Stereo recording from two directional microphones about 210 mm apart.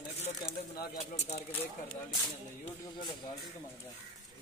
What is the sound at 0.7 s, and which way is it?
Speech, 35° left (ahead or behind).